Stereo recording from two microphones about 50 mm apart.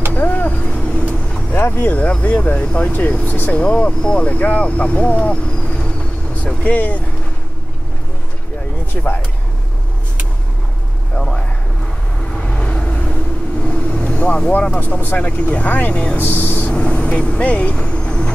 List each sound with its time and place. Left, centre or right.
0.1 s vehicle: left
0.7 s vehicle: left
1.5 s speech: left
2.6 s speech: left
3.3 s speech: left
3.5 s speech: left
6.4 s speech: left
8.9 s speech: left
11.1 s a sound: centre
12.4 s vehicle: centre
14.8 s speech: left
16.2 s speech: left
16.7 s speech: left
17.7 s vehicle: centre